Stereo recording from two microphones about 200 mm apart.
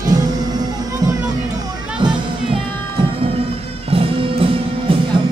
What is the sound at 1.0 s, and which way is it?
Music, 20° right (ahead or behind).